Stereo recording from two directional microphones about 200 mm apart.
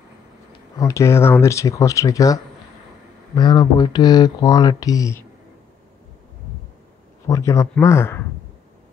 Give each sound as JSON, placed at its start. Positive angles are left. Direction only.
{"t": 0.7, "sound": "speech", "side_deg": 15}
{"t": 7.2, "sound": "speech", "side_deg": 15}